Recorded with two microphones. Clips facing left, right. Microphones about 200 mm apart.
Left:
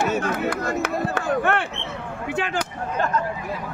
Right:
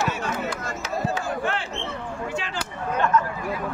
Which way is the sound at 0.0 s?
50° left (ahead or behind).